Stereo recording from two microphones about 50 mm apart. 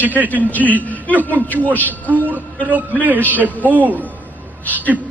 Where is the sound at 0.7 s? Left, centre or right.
Left.